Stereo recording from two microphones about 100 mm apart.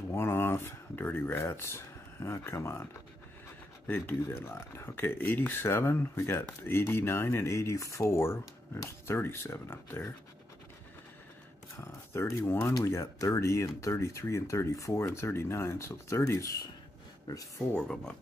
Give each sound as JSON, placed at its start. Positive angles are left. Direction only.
{"t": 0.1, "sound": "speech", "side_deg": 25}
{"t": 11.8, "sound": "speech", "side_deg": 30}
{"t": 17.7, "sound": "speech", "side_deg": 5}